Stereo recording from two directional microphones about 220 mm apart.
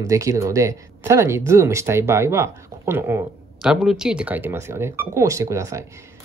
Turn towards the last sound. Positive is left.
turn(degrees=-15)  # may be behind; listen again after turning